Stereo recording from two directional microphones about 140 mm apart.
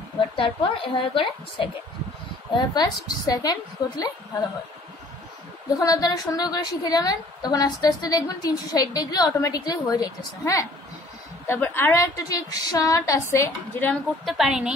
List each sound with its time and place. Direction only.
0.4 s a woman's voice: 40° left (ahead or behind)
5.8 s a woman's voice: 25° left (ahead or behind)
14.2 s a woman's voice: centre (ahead or behind)